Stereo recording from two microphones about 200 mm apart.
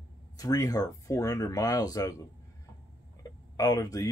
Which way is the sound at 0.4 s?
20° left (ahead or behind).